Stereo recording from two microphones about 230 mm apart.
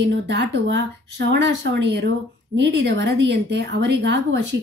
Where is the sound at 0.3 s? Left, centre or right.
Right.